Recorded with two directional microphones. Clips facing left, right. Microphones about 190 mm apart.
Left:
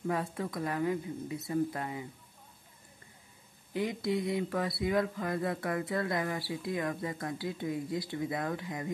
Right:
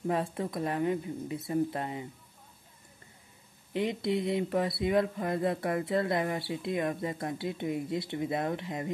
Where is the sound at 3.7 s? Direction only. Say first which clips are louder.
Right 2 dB; 25° right (ahead or behind).